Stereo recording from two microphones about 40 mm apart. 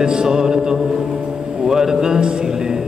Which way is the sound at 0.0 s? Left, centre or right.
Centre.